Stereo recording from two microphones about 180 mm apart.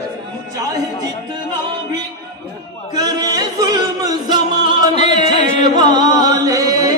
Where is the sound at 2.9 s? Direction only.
20° right (ahead or behind).